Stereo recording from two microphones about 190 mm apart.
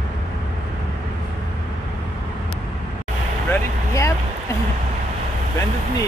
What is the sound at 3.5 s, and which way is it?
Vehicle, 15° left (ahead or behind).